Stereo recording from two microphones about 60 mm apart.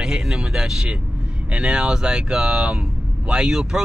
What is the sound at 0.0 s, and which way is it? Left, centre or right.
Vehicle, centre.